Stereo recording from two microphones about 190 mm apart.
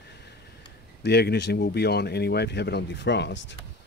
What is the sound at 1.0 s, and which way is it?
Speech, 60° left (ahead or behind).